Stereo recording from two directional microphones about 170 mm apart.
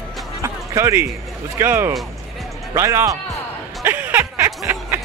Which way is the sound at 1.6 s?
15° right (ahead or behind).